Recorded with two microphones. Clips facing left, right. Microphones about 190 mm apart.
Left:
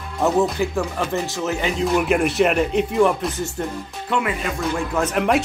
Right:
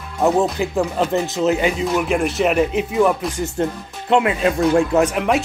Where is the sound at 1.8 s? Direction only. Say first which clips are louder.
Even; centre (ahead or behind).